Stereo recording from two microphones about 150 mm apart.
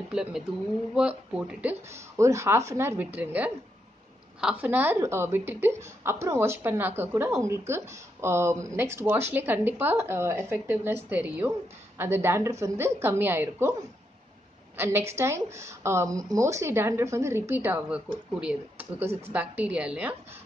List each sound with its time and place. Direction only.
0.1 s a woman's voice: 5° right (ahead or behind)
14.8 s a woman's voice: 15° right (ahead or behind)